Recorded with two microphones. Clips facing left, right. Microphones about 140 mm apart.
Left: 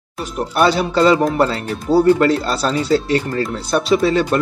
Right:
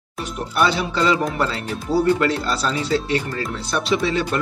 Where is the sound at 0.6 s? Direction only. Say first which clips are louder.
Left 5 dB; 45° left (ahead or behind).